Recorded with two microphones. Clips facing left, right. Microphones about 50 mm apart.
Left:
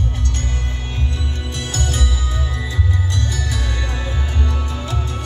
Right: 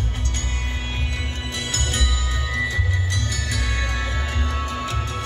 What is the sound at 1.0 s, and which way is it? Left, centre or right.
Music, right.